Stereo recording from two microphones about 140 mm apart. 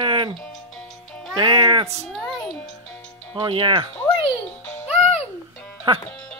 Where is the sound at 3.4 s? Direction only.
40° right (ahead or behind).